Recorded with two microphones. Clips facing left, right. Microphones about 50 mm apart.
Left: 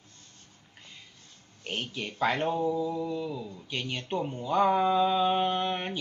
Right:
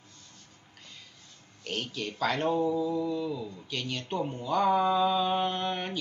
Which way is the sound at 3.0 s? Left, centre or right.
Centre.